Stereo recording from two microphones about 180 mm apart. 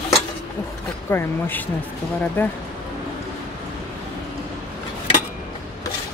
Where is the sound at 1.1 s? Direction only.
10° left (ahead or behind).